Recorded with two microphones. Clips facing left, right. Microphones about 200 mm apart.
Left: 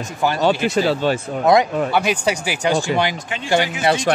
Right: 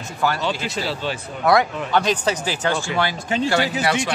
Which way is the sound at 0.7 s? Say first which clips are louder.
Left 8 dB; 45° left (ahead or behind).